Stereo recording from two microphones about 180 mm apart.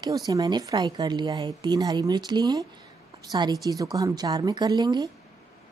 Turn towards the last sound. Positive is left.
turn(degrees=-25)  # may be behind; listen again after turning